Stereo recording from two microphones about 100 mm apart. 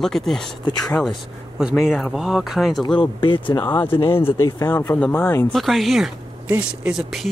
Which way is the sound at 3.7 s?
20° left (ahead or behind).